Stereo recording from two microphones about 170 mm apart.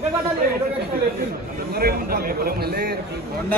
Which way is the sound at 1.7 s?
60° right (ahead or behind).